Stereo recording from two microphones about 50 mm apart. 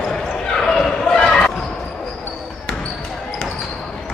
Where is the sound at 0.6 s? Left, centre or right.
Centre.